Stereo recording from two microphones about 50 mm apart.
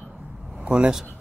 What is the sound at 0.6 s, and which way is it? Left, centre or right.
Speech, right.